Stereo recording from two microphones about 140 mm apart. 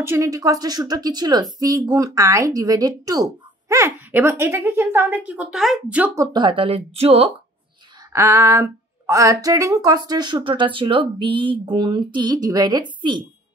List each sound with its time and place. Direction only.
0.0 s a woman's voice: 20° right (ahead or behind); by 6.0 s 5° right (ahead or behind)
6.1 s speech: 35° right (ahead or behind)
8.1 s speech: 20° right (ahead or behind)